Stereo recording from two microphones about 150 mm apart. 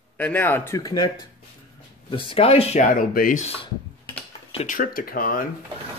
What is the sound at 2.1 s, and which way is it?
Speech, 35° left (ahead or behind).